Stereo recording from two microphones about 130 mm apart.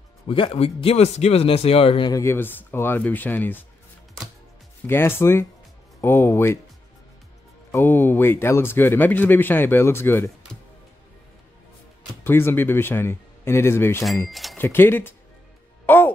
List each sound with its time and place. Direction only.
0.3 s speech: 45° left (ahead or behind)
2.0 s speech: 25° left (ahead or behind)
4.8 s speech: 15° left (ahead or behind)
7.7 s speech: 15° left (ahead or behind)
12.2 s speech: 15° left (ahead or behind)
14.3 s a sound: centre (ahead or behind)
14.6 s speech: 15° left (ahead or behind)
15.8 s music: 15° left (ahead or behind)